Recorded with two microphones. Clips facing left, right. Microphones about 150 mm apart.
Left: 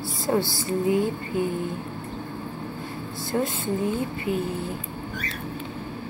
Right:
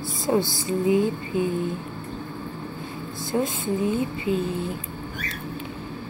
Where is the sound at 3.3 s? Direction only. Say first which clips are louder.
Right 1 dB; 20° right (ahead or behind).